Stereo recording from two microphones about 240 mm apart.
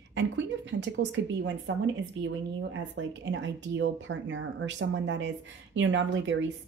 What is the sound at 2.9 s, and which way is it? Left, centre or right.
A woman's voice, right.